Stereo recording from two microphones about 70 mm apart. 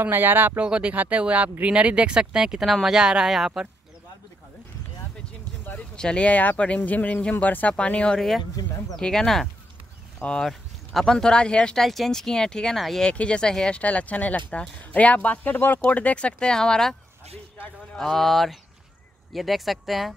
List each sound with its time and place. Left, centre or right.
0.0 s speech: right
0.6 s speech: centre
5.7 s a sound: centre
6.0 s speech: centre
11.8 s speech: centre
13.1 s speech: centre
17.9 s speech: centre